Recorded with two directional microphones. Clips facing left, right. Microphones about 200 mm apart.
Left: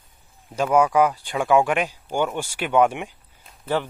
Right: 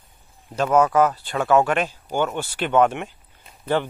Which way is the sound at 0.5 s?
10° left (ahead or behind).